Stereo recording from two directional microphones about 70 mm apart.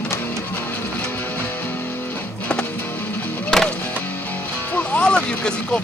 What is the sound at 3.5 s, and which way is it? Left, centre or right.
Music, centre.